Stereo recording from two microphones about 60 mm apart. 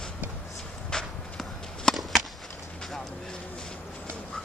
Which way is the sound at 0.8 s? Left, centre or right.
Centre.